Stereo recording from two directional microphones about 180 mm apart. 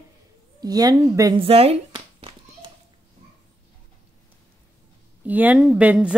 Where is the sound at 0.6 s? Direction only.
20° right (ahead or behind).